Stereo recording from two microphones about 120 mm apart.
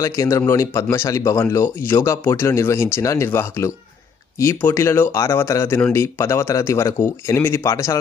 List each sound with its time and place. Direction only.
0.0 s speech: 25° left (ahead or behind)